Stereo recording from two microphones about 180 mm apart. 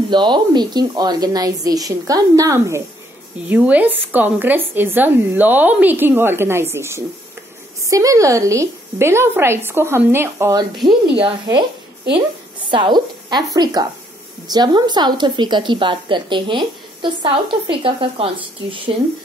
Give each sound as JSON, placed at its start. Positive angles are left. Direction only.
{"t": 0.1, "sound": "a woman's voice", "side_deg": -25}
{"t": 10.9, "sound": "a woman's voice", "side_deg": -30}